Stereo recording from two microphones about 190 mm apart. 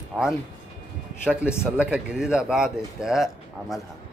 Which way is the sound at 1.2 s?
5° right (ahead or behind).